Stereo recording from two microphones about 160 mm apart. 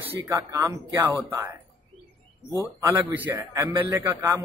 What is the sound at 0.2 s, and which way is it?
Speech, 20° right (ahead or behind).